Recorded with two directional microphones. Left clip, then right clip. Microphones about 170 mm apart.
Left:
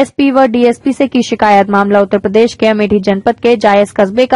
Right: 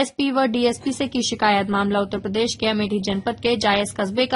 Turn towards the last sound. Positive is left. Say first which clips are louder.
# left 12 dB
turn(degrees=40)  # may be behind; listen again after turning